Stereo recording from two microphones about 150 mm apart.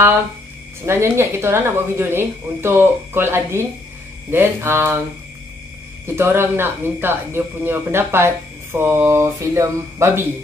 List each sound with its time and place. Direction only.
0.8 s speech: 15° right (ahead or behind)
6.0 s speech: 15° right (ahead or behind)